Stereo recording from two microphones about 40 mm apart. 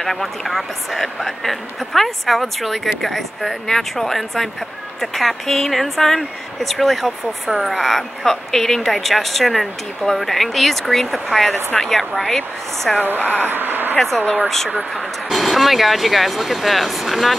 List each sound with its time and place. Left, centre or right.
0.0 s speech: centre
13.2 s speech: left
13.5 s speech: right
15.3 s speech: centre